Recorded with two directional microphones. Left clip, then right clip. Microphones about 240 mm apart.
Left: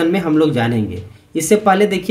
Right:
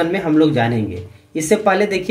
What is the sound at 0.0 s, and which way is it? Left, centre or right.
Speech, centre.